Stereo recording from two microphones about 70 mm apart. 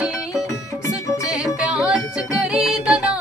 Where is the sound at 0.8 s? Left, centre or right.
Left.